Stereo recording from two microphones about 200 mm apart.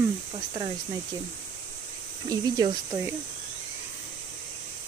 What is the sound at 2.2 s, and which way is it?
Speech, 20° right (ahead or behind).